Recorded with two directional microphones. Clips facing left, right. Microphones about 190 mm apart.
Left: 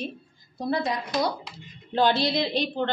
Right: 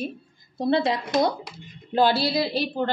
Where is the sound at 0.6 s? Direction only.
25° right (ahead or behind).